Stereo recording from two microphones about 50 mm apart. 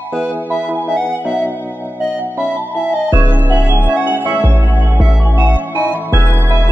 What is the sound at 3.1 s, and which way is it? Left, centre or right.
Music, right.